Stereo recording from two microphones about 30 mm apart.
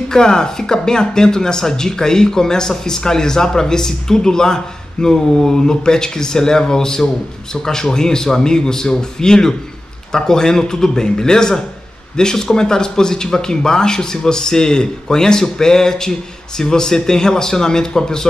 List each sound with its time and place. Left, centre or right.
0.1 s speech: left